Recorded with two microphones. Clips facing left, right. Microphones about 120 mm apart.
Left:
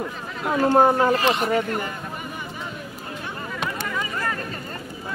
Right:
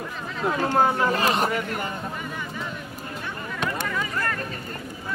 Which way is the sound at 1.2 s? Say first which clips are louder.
Left 1 dB; 40° right (ahead or behind).